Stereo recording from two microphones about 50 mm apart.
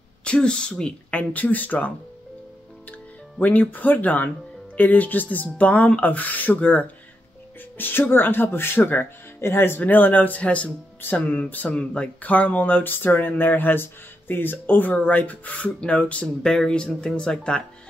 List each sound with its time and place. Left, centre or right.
0.2 s speech: centre
1.3 s speech: left
3.3 s speech: left
16.4 s speech: centre